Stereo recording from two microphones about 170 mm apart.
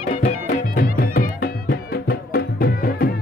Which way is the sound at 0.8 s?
60° left (ahead or behind).